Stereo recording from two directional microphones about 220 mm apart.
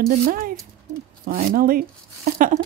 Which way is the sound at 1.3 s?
40° right (ahead or behind).